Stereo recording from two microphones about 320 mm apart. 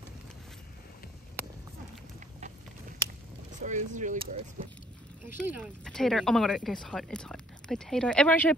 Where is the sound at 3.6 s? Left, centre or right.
Right.